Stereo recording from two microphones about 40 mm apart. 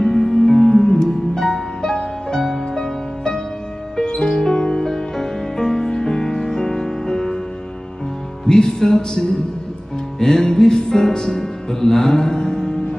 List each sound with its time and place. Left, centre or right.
0.0 s music: centre
8.5 s music: centre